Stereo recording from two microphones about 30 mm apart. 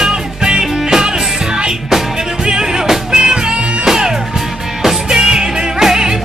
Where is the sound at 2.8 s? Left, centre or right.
Centre.